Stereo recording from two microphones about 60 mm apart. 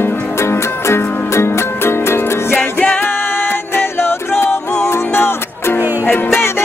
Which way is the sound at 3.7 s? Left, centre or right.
Left.